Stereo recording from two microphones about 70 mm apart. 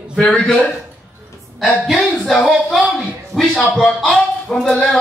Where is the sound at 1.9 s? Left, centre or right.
Centre.